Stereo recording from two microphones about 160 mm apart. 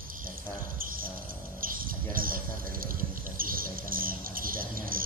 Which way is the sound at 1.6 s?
60° right (ahead or behind).